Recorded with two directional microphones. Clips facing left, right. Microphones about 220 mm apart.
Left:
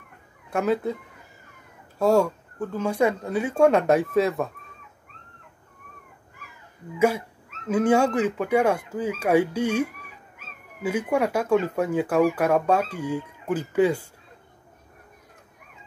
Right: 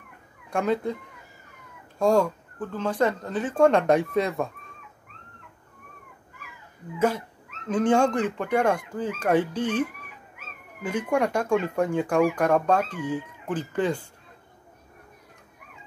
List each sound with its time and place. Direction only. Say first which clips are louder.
0.5 s speech: left 1 dB; 5° left (ahead or behind)
2.0 s speech: left 1 dB; 5° left (ahead or behind)
7.0 s speech: left 3 dB; 10° left (ahead or behind)